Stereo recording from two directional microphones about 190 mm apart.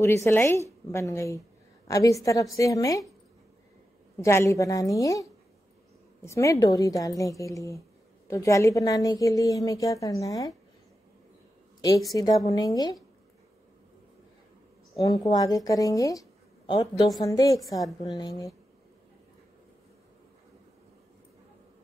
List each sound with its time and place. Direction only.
0.0 s a woman's voice: 15° left (ahead or behind)
4.2 s a woman's voice: 15° left (ahead or behind)
12.2 s a woman's voice: 20° left (ahead or behind)
15.0 s a woman's voice: 20° left (ahead or behind)